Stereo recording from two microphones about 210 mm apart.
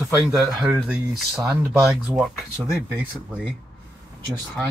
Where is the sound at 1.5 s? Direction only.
15° right (ahead or behind).